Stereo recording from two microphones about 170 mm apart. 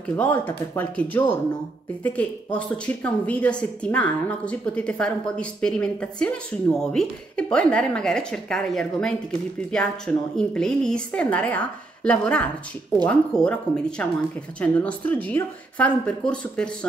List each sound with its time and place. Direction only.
0.0 s a woman's voice: 10° left (ahead or behind)